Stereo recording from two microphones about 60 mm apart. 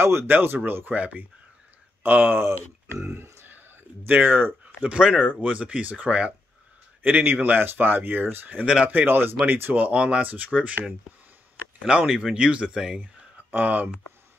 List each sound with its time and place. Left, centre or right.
0.0 s speech: right
4.0 s speech: right
4.8 s speech: centre
13.0 s a sound: right